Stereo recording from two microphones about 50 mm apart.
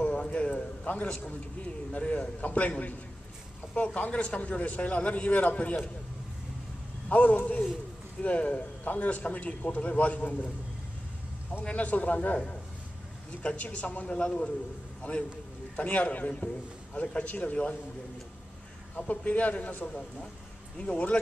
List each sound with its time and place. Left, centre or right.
0.0 s a sound: left
1.0 s a man's voice: left
7.1 s a man's voice: left
11.7 s a man's voice: left
13.4 s a man's voice: left
15.0 s a man's voice: left
18.9 s a man's voice: left
19.9 s a man's voice: centre